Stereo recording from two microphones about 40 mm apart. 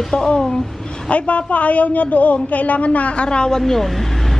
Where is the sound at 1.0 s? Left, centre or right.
Left.